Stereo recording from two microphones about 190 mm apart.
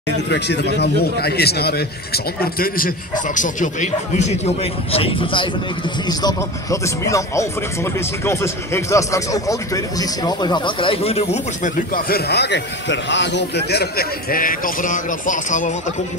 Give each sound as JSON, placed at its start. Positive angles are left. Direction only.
{"t": 0.3, "sound": "a man's voice", "side_deg": 60}
{"t": 4.9, "sound": "a man's voice", "side_deg": 30}
{"t": 11.7, "sound": "a man's voice", "side_deg": 50}